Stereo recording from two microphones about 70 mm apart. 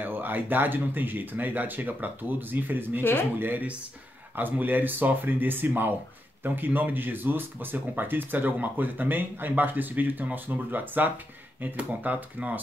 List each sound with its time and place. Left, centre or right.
0.0 s speech: right
3.0 s speech: left
3.3 s speech: right